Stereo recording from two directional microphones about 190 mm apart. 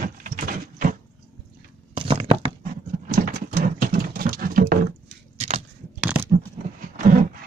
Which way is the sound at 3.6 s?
50° right (ahead or behind).